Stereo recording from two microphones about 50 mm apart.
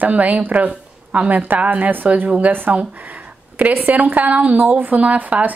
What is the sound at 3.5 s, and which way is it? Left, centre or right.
Speech, right.